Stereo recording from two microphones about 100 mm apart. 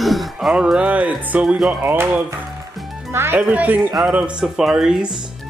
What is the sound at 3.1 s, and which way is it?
Speech, 25° right (ahead or behind).